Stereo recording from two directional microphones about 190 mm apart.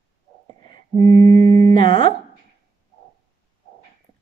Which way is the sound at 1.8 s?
30° left (ahead or behind).